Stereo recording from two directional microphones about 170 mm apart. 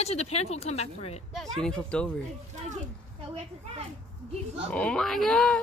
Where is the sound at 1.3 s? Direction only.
5° left (ahead or behind).